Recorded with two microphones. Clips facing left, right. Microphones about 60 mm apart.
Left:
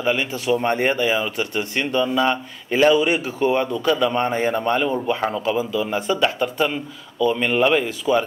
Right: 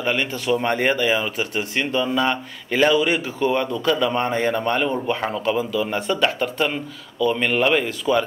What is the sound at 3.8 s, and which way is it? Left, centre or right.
Speech, centre.